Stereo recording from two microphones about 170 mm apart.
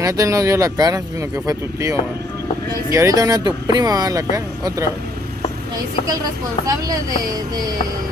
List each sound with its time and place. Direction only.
0.0 s speech: 20° right (ahead or behind)
6.6 s speech: 20° right (ahead or behind)